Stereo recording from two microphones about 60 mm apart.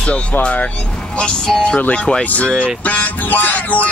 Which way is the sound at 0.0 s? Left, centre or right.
Left.